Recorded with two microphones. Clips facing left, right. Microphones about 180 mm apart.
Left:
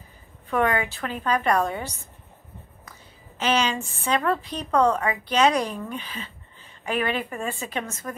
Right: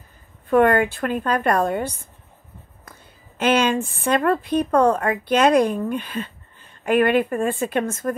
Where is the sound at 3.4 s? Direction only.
55° right (ahead or behind).